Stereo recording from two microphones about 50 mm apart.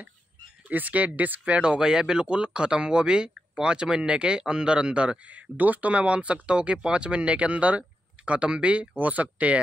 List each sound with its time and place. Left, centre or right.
0.7 s speech: right
1.7 s speech: centre; by 9.6 s right